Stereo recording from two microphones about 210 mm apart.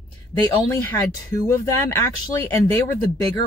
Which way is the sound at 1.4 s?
10° left (ahead or behind).